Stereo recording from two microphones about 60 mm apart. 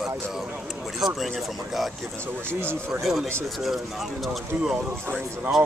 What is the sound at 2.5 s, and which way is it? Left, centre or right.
Speech, right.